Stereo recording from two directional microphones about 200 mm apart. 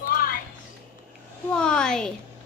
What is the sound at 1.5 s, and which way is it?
Speech, 5° left (ahead or behind).